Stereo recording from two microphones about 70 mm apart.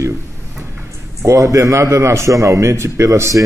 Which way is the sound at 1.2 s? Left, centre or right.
Right.